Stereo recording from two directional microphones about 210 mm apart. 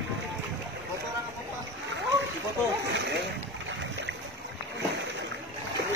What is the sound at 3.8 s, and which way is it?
Boat, 60° right (ahead or behind).